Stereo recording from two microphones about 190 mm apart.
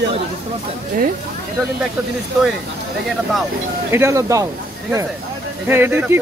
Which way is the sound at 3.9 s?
15° right (ahead or behind).